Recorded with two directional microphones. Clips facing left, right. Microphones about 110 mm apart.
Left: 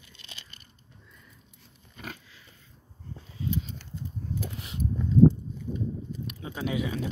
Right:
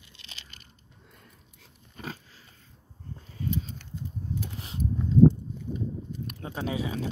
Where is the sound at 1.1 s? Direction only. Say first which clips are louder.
Right 3 dB; 70° right (ahead or behind).